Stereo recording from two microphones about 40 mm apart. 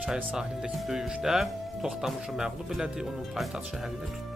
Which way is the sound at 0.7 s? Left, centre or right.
Centre.